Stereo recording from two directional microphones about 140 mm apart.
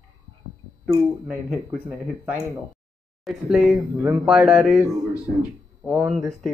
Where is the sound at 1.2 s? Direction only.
Centre (ahead or behind).